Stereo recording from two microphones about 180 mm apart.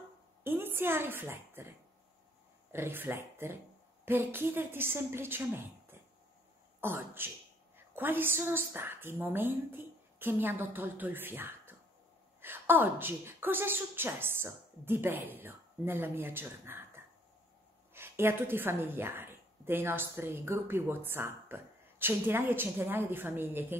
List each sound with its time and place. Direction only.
0.4 s a woman's voice: 10° right (ahead or behind)